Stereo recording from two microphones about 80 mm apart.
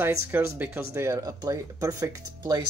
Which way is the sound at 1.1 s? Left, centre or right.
Right.